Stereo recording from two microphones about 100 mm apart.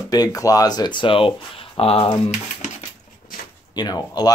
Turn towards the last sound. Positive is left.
turn(degrees=40)  # may be behind; listen again after turning